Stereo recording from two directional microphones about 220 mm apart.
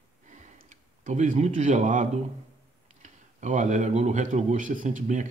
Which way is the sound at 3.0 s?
35° right (ahead or behind).